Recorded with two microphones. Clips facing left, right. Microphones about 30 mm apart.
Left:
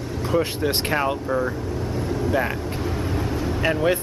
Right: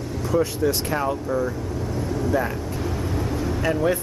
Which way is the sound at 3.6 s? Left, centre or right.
Left.